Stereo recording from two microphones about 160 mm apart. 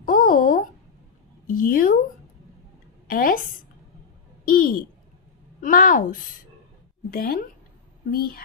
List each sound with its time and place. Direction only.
0.0 s a sound: 60° left (ahead or behind)
3.1 s a woman's voice: 60° left (ahead or behind)
4.5 s a woman's voice: 60° left (ahead or behind)